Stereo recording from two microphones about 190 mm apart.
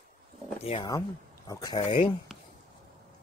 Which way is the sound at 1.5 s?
20° left (ahead or behind).